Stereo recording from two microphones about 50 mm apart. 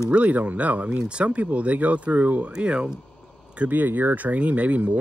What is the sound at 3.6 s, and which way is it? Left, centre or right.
Speech, right.